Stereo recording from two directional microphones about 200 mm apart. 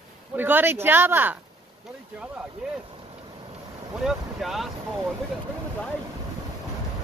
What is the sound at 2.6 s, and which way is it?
Speech, 5° right (ahead or behind).